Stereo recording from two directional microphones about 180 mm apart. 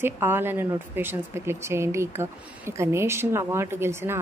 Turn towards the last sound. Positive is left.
turn(degrees=-15)  # may be behind; listen again after turning